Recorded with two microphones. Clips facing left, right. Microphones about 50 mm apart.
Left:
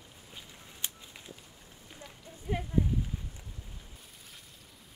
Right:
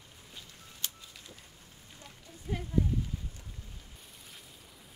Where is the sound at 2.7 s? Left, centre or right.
Left.